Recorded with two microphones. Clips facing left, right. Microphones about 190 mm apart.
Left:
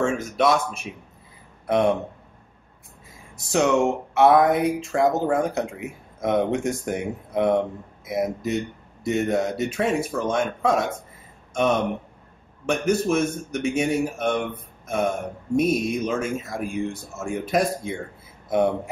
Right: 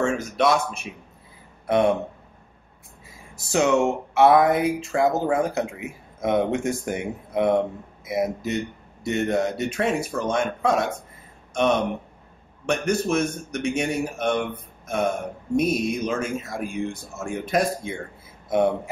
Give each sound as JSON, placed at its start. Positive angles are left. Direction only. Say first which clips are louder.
{"t": 0.0, "sound": "speech", "louder": "even", "side_deg": 0}
{"t": 3.3, "sound": "speech", "louder": "even", "side_deg": 0}